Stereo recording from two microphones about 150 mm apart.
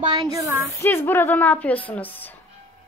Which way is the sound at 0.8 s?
15° left (ahead or behind).